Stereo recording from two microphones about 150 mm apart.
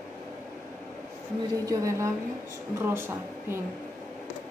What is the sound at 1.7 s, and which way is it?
A woman's voice, 20° right (ahead or behind).